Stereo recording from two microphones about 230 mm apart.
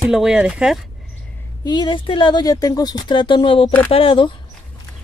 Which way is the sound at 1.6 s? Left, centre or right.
Centre.